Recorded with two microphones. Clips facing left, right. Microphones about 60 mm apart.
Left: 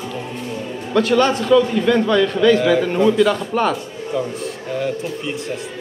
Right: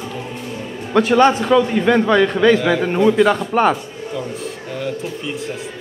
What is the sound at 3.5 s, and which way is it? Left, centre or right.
Speech, right.